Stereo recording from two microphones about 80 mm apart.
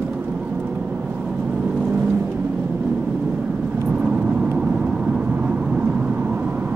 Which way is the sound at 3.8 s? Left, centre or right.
Centre.